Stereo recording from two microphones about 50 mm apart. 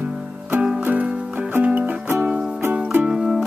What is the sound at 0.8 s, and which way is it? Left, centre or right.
Music, right.